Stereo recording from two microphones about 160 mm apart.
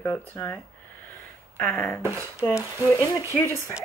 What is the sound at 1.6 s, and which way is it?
Speech, 10° left (ahead or behind).